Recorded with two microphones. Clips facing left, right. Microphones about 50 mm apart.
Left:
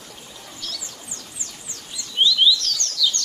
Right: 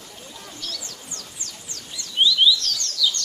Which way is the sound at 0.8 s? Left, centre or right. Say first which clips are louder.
Even; centre.